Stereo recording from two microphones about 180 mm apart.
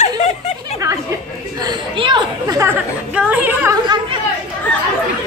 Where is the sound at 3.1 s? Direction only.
5° right (ahead or behind).